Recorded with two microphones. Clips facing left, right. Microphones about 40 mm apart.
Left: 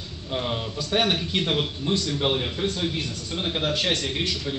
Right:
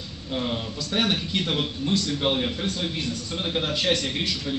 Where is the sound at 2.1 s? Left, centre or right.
Centre.